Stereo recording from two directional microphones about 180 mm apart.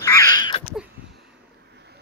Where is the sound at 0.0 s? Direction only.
20° left (ahead or behind).